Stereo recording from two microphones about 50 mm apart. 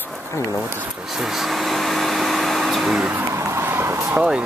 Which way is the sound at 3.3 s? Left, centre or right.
Right.